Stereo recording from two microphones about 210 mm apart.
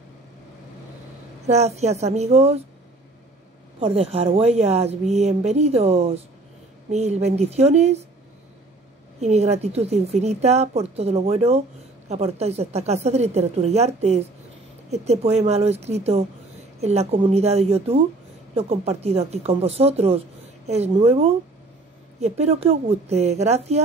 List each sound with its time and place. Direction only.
1.5 s a woman's voice: 30° right (ahead or behind)
3.8 s a woman's voice: 30° right (ahead or behind)
9.2 s a woman's voice: 30° right (ahead or behind)